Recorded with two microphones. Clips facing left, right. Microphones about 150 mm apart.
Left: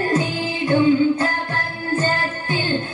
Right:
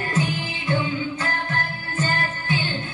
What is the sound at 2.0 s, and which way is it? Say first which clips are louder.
Music: even; 45° left (ahead or behind).